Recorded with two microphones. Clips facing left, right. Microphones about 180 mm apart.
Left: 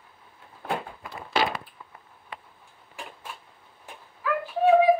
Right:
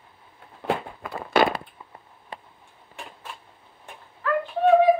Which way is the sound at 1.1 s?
55° right (ahead or behind).